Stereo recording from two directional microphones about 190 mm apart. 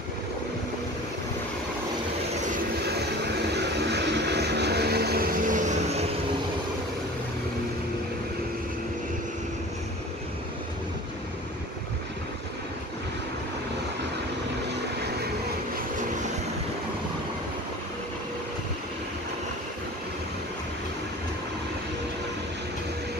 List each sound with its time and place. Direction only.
3.5 s vehicle: 65° right (ahead or behind); by 6.0 s 35° right (ahead or behind)